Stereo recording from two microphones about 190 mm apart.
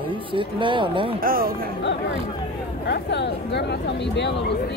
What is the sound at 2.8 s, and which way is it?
Speech, 65° left (ahead or behind).